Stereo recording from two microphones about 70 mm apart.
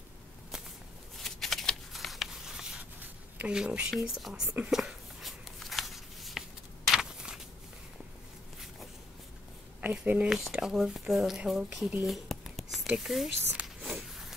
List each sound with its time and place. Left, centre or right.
1.1 s shuffling cards: centre
3.0 s writing: right
3.5 s speech: centre
4.6 s a sound: centre
9.8 s speech: right
10.3 s speech: centre
12.1 s whispering: centre
13.5 s a sound: centre